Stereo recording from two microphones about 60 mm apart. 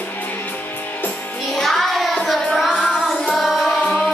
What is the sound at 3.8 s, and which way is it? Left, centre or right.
Music, centre.